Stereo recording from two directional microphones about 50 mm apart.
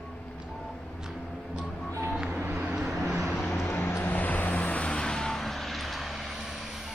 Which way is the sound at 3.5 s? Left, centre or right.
Left.